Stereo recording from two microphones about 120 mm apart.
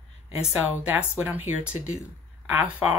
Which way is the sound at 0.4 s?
10° right (ahead or behind).